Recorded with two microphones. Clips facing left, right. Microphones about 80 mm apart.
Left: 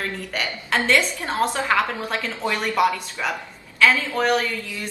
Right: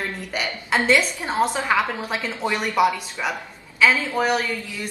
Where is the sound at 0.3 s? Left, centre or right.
Centre.